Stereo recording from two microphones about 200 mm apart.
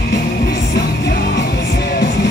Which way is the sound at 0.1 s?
55° left (ahead or behind).